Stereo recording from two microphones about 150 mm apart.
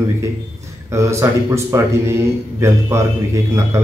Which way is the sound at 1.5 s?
20° right (ahead or behind).